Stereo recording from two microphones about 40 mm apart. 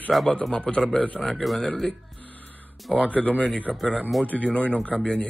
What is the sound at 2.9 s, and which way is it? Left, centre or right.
Mantra, left.